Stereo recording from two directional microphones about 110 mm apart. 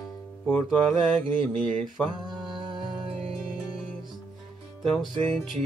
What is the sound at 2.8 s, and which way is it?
Music, 50° right (ahead or behind).